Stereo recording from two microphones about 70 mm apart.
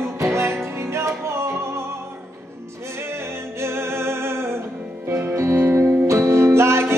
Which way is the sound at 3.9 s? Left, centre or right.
Right.